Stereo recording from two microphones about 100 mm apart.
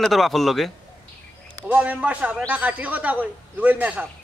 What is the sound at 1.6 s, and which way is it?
A man's voice, 15° right (ahead or behind).